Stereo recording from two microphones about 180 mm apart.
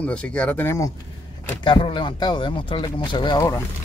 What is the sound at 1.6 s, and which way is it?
Speech, 30° left (ahead or behind).